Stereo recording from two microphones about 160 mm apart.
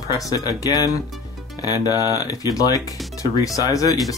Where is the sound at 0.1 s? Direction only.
20° left (ahead or behind).